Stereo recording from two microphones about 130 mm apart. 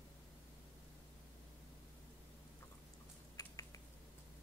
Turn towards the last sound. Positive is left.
turn(degrees=25)  # may be behind; listen again after turning